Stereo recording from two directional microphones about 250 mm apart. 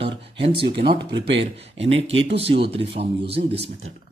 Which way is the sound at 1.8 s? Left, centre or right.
Right.